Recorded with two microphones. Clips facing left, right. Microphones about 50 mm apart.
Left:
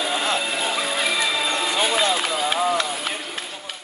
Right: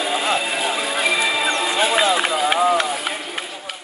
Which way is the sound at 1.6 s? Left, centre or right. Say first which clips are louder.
Right 3 dB; centre.